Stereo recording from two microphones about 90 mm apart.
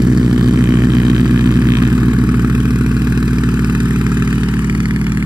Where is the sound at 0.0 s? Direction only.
10° right (ahead or behind).